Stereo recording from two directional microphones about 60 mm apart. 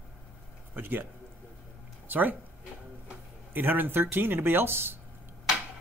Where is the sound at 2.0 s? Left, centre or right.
Right.